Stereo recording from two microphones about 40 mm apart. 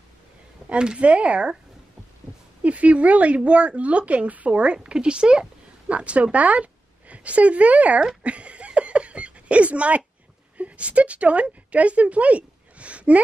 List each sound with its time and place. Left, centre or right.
0.7 s speech: right
2.6 s speech: right
5.9 s a woman's voice: right
8.2 s a sound: right
10.6 s speech: right